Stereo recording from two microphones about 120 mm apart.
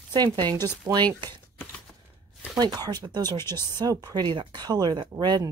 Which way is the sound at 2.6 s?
35° right (ahead or behind).